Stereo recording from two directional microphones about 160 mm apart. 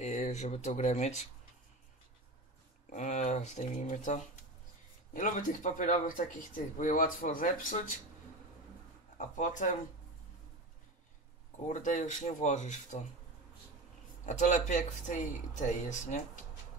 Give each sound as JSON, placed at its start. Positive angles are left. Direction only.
{"t": 0.0, "sound": "speech", "side_deg": 45}
{"t": 2.9, "sound": "speech", "side_deg": 50}
{"t": 9.2, "sound": "speech", "side_deg": 50}
{"t": 11.6, "sound": "speech", "side_deg": 45}
{"t": 14.2, "sound": "speech", "side_deg": 45}